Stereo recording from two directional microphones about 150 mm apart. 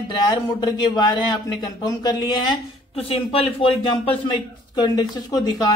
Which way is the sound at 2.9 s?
40° left (ahead or behind).